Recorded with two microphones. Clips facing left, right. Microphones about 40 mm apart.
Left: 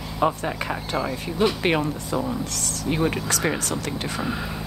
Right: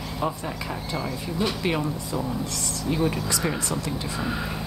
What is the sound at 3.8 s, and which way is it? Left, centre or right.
Speech, left.